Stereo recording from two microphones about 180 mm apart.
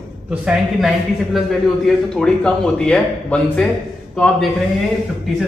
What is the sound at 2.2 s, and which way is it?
A man's voice, 5° left (ahead or behind).